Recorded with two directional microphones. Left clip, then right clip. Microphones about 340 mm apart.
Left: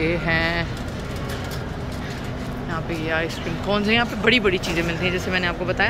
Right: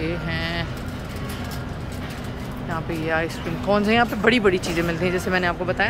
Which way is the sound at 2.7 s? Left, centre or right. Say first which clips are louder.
Right 1 dB; centre.